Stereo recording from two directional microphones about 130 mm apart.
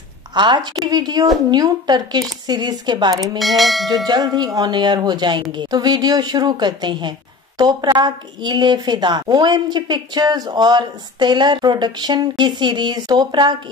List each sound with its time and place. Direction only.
0.3 s a woman's voice: 35° right (ahead or behind)
3.3 s church bell: centre (ahead or behind)
4.0 s a woman's voice: 30° right (ahead or behind)